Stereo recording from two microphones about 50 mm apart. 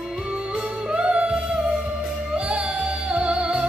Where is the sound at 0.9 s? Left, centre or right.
Right.